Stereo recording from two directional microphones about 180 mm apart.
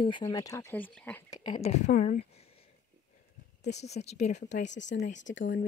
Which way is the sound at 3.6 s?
40° left (ahead or behind).